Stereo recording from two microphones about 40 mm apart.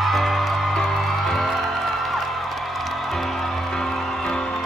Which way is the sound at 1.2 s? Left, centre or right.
Centre.